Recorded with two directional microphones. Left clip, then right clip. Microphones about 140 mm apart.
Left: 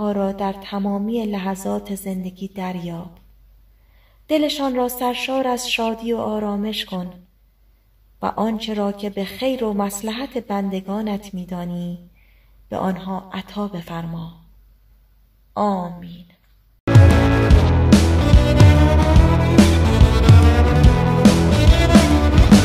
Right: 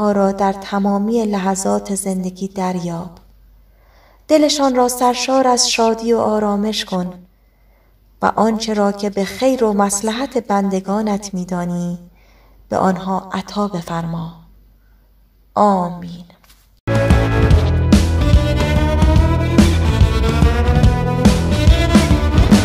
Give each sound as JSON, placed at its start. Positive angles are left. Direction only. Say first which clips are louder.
{"t": 0.0, "sound": "speech", "louder": "right 7 dB", "side_deg": -25}
{"t": 4.3, "sound": "speech", "louder": "right 7 dB", "side_deg": -25}
{"t": 8.2, "sound": "speech", "louder": "right 7 dB", "side_deg": -25}
{"t": 15.5, "sound": "speech", "louder": "right 8 dB", "side_deg": -25}
{"t": 16.8, "sound": "music", "louder": "even", "side_deg": 0}